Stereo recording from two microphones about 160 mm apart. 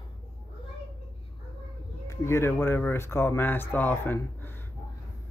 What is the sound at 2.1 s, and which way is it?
Speech, 15° left (ahead or behind).